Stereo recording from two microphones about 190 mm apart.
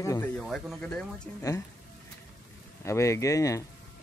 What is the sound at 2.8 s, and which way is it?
Speech, 15° left (ahead or behind).